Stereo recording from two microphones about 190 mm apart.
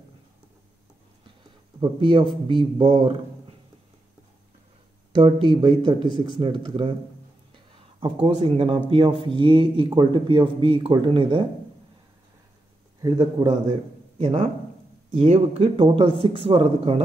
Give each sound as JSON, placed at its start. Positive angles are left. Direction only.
{"t": 1.8, "sound": "a man's voice", "side_deg": -25}
{"t": 5.1, "sound": "a man's voice", "side_deg": -25}
{"t": 13.0, "sound": "a man's voice", "side_deg": -25}
{"t": 14.1, "sound": "a man's voice", "side_deg": -35}